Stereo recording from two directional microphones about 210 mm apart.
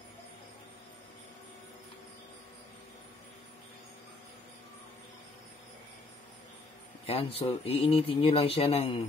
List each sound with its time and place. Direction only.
7.1 s speech: 30° left (ahead or behind)